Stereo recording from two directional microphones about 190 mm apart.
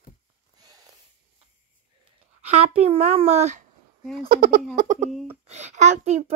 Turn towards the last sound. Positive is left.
turn(degrees=-35)  # may be behind; listen again after turning